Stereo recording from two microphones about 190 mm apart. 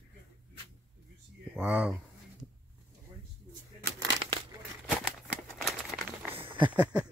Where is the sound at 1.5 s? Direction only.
5° right (ahead or behind).